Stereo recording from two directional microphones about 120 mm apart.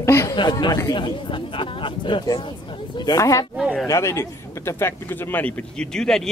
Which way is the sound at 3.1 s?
25° left (ahead or behind).